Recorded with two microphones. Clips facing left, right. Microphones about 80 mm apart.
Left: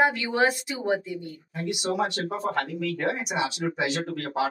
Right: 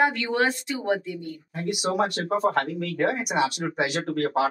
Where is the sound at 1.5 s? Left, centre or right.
Right.